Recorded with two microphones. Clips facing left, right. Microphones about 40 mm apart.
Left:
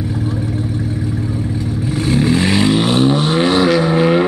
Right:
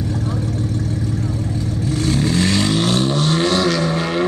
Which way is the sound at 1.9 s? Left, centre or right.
Centre.